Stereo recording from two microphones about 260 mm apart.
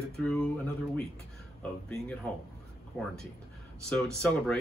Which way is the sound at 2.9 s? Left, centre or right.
Centre.